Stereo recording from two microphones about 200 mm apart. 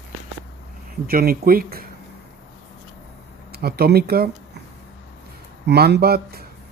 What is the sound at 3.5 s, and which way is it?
Speech, 50° right (ahead or behind).